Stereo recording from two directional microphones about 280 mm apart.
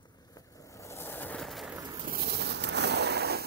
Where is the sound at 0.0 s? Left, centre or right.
Centre.